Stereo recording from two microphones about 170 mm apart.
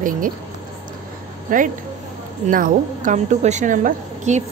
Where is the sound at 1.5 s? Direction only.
50° right (ahead or behind).